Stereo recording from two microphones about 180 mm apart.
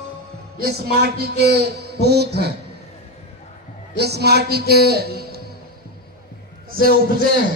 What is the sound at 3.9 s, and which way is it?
A man's voice, 65° right (ahead or behind).